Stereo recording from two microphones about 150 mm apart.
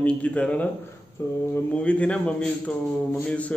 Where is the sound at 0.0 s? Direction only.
10° left (ahead or behind).